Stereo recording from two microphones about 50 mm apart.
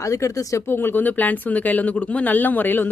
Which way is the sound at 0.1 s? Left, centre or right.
Left.